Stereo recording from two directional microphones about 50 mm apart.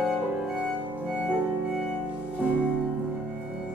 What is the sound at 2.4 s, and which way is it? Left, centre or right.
Music, right.